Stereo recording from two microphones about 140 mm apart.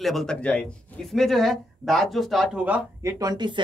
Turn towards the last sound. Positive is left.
turn(degrees=-30)  # may be behind; listen again after turning